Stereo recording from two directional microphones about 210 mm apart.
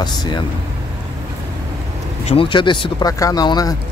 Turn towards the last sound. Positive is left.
turn(degrees=20)  # may be behind; listen again after turning